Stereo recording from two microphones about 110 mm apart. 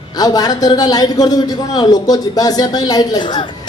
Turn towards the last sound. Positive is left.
turn(degrees=40)  # may be behind; listen again after turning